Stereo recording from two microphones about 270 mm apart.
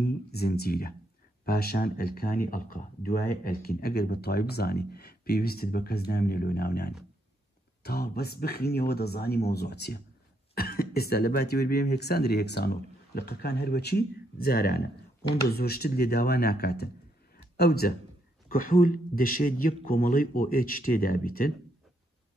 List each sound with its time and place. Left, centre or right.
0.0 s speech: left